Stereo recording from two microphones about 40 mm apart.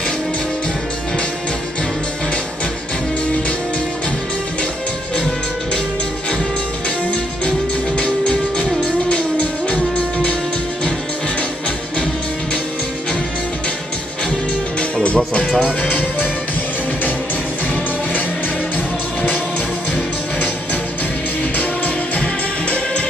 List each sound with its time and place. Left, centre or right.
8.0 s music: left
15.0 s music: left
21.5 s music: left
22.2 s music: left